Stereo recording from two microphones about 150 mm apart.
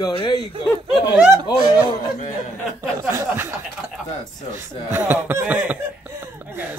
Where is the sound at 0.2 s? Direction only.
30° left (ahead or behind).